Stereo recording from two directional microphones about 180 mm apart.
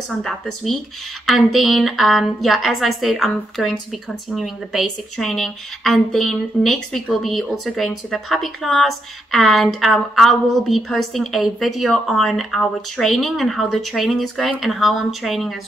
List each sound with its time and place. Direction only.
1.2 s speech: centre (ahead or behind)